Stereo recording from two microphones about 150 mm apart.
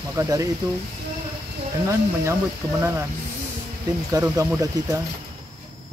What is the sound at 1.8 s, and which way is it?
Speech, 20° right (ahead or behind).